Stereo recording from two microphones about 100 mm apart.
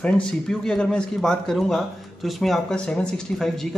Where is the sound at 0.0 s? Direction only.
10° left (ahead or behind).